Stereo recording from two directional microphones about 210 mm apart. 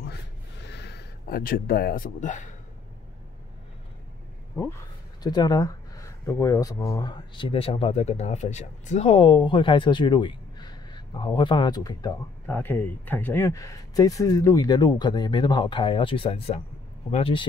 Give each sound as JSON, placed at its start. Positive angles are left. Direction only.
{"t": 0.6, "sound": "speech", "side_deg": 55}
{"t": 5.2, "sound": "speech", "side_deg": 20}